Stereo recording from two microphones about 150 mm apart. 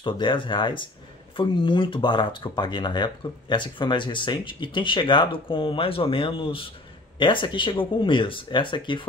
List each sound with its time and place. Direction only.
0.0 s speech: 35° left (ahead or behind)